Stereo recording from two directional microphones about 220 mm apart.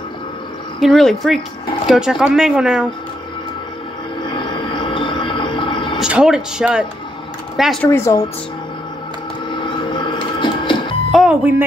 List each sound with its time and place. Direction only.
0.7 s speech: centre (ahead or behind)
4.2 s cricket: 20° left (ahead or behind)
5.9 s speech: 5° right (ahead or behind)
7.9 s speech: 10° left (ahead or behind)
9.5 s printer: 20° left (ahead or behind)
11.1 s music: 5° right (ahead or behind)